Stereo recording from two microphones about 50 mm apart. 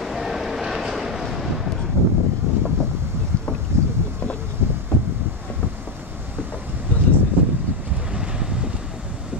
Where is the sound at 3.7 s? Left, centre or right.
Right.